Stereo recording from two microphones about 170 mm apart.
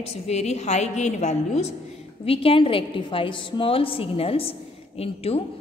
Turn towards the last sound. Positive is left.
turn(degrees=35)  # may be behind; listen again after turning